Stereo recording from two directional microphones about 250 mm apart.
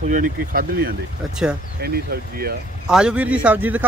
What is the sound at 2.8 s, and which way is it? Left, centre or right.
Speech, centre.